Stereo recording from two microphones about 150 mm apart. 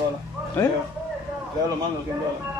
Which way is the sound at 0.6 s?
15° left (ahead or behind).